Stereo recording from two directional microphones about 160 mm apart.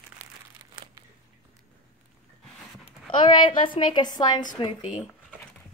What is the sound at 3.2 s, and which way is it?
A woman's voice, 30° left (ahead or behind).